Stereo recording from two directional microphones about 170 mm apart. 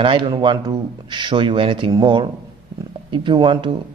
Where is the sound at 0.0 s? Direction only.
30° right (ahead or behind).